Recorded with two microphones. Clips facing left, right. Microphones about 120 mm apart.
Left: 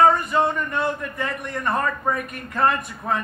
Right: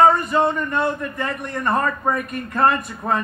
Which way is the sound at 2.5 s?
40° right (ahead or behind).